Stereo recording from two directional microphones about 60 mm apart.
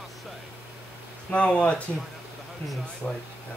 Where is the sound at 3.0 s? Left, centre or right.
Centre.